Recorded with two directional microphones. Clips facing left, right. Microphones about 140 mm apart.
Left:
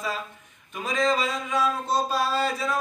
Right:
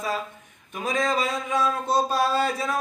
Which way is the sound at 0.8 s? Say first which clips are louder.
Even; 50° right (ahead or behind).